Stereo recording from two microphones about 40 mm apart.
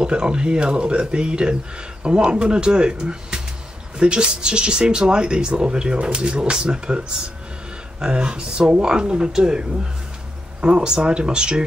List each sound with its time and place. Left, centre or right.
0.0 s speech: right
8.0 s speech: right